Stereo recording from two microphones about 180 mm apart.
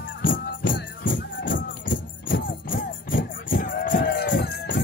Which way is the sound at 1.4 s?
90° left.